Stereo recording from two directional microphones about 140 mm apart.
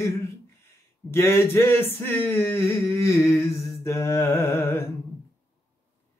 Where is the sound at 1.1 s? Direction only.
20° left (ahead or behind).